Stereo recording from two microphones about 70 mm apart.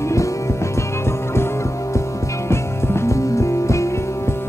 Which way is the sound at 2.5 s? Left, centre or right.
Left.